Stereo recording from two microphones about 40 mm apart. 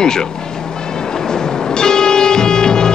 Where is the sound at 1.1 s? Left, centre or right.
Centre.